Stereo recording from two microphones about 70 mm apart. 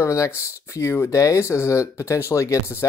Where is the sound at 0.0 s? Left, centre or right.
Left.